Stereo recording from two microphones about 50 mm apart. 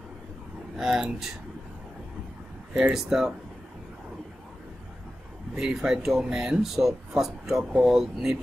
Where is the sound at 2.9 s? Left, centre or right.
Centre.